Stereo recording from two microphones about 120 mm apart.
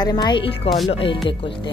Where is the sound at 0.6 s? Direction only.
Centre (ahead or behind).